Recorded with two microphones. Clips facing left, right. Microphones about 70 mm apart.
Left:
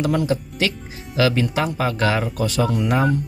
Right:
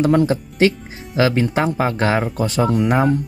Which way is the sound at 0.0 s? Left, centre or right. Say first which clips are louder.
Right 5 dB; right.